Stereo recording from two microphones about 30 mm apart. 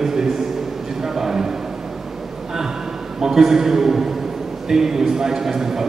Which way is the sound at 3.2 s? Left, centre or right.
Centre.